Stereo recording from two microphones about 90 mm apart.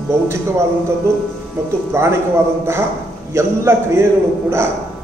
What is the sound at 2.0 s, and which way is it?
Speech, 30° right (ahead or behind).